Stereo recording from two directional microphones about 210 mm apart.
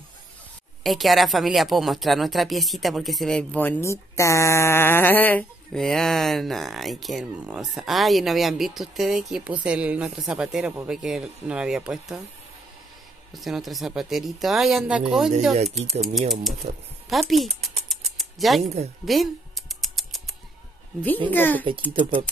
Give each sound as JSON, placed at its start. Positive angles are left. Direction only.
{"t": 0.8, "sound": "speech", "side_deg": 0}
{"t": 13.3, "sound": "speech", "side_deg": 0}
{"t": 15.8, "sound": "speech", "side_deg": -30}
{"t": 16.2, "sound": "speech", "side_deg": 0}
{"t": 17.8, "sound": "a sound", "side_deg": 0}
{"t": 18.6, "sound": "speech", "side_deg": -30}
{"t": 19.0, "sound": "a sound", "side_deg": 0}
{"t": 21.3, "sound": "speech", "side_deg": 10}
{"t": 21.9, "sound": "speech", "side_deg": -25}